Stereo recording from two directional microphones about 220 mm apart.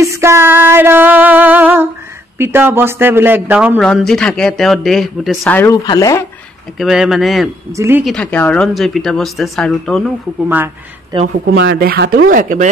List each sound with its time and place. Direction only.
0.0 s music: 15° right (ahead or behind)
2.3 s a man's voice: 10° right (ahead or behind); by 6.2 s 15° left (ahead or behind)
6.8 s speech: centre (ahead or behind)
7.7 s a man's voice: 10° right (ahead or behind)
8.0 s speech: 5° left (ahead or behind)
10.5 s a man's voice: 10° right (ahead or behind)
11.5 s speech: 50° right (ahead or behind)
12.3 s speech: 35° right (ahead or behind)